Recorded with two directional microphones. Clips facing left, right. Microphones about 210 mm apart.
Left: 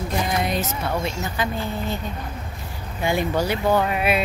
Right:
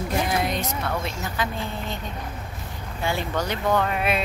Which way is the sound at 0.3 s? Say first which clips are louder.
Left 1 dB; centre (ahead or behind).